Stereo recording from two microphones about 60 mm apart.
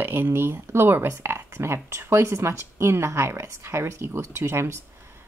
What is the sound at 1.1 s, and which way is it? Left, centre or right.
A woman's voice, right.